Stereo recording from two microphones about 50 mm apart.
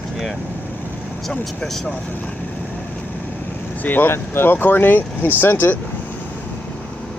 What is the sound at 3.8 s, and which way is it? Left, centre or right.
Speech, left.